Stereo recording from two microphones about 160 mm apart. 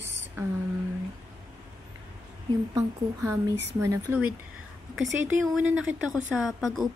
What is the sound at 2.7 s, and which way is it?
A woman's voice, 20° right (ahead or behind).